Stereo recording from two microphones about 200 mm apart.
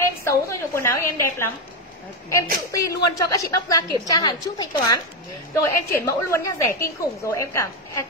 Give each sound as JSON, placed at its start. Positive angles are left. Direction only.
{"t": 0.0, "sound": "a woman's voice", "side_deg": 15}